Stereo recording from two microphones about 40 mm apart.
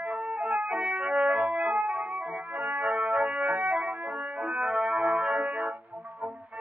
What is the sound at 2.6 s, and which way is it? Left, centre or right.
Music, right.